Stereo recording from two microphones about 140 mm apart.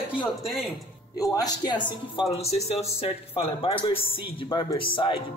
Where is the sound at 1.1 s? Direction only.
25° left (ahead or behind).